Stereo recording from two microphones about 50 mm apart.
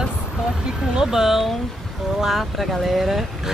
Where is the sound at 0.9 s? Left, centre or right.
Centre.